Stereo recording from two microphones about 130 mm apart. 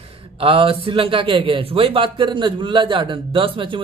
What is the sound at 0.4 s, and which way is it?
A man's voice, 45° right (ahead or behind).